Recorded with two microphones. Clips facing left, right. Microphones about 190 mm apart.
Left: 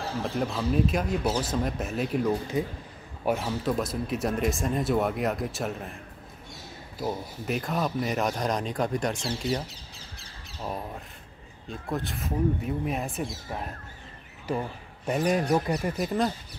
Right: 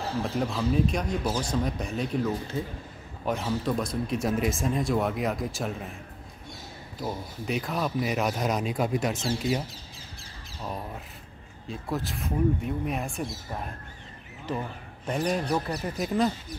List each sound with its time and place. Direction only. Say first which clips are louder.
0.2 s speech: even; centre (ahead or behind)
7.0 s speech: left 2 dB; centre (ahead or behind)
11.7 s speech: even; centre (ahead or behind); by 15.9 s 15° left (ahead or behind)
16.0 s speech: right 3 dB; centre (ahead or behind)